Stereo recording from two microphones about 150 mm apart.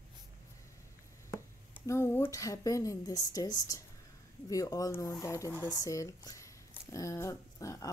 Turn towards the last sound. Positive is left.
turn(degrees=20)  # may be behind; listen again after turning